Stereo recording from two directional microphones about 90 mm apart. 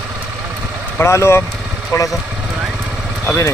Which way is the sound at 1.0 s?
30° left (ahead or behind).